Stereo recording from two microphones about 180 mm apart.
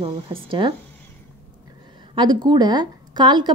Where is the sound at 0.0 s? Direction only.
30° right (ahead or behind).